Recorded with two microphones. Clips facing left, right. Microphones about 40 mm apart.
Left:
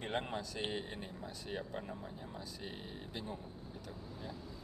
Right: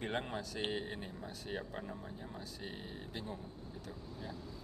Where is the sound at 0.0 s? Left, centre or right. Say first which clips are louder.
Even; centre.